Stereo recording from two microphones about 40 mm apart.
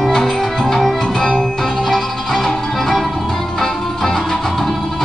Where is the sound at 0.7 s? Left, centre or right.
Centre.